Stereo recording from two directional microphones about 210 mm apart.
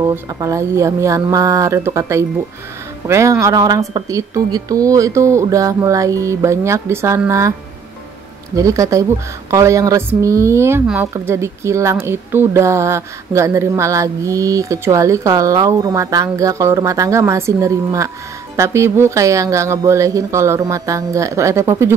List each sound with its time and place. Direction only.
0.0 s a woman's voice: 15° right (ahead or behind)
8.5 s a woman's voice: 15° right (ahead or behind)